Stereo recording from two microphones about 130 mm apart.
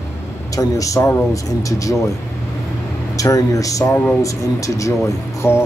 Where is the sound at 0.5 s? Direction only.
25° left (ahead or behind).